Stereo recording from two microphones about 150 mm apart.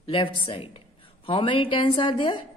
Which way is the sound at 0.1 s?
35° left (ahead or behind).